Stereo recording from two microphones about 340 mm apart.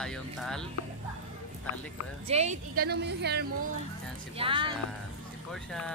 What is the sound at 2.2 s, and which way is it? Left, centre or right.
A woman's voice, centre.